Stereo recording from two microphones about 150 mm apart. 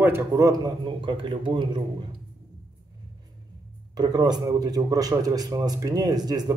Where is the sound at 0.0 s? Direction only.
20° right (ahead or behind).